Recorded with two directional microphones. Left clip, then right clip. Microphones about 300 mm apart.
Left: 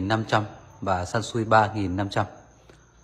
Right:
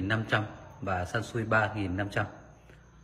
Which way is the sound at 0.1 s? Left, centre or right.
Centre.